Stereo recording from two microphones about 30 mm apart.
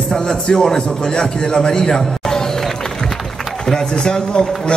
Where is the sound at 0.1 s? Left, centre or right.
Left.